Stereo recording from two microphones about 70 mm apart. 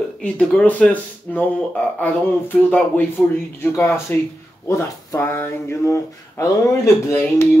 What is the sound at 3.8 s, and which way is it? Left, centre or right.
Speech, left.